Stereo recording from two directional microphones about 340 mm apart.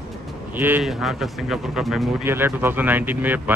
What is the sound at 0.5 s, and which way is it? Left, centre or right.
Speech, centre.